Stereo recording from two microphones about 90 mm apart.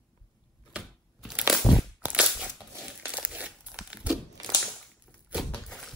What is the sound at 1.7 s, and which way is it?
Crushing, 55° left (ahead or behind).